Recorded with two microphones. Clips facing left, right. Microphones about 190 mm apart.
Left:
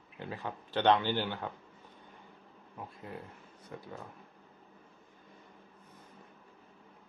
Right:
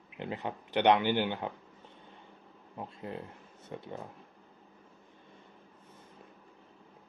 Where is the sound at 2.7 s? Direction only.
25° right (ahead or behind).